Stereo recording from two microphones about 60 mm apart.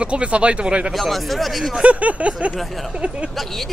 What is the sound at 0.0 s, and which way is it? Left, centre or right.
Speech, centre.